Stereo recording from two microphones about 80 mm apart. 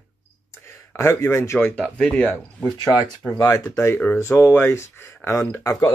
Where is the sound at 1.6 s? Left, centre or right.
Left.